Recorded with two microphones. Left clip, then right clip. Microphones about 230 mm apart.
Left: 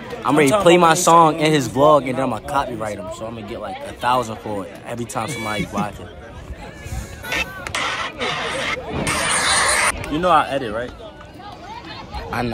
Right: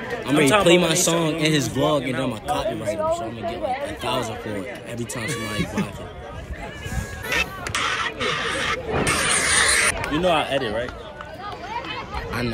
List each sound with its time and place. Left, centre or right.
0.2 s a man's voice: centre
7.2 s hubbub: centre
10.3 s speech: left